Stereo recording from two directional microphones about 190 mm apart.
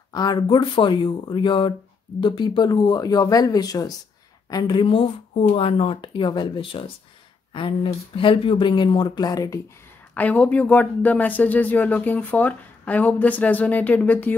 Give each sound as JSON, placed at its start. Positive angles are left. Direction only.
{"t": 0.1, "sound": "speech", "side_deg": 20}
{"t": 10.1, "sound": "speech", "side_deg": 10}